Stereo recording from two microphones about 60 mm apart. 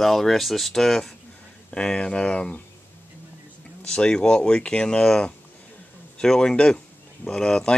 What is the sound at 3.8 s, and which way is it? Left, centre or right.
Speech, centre.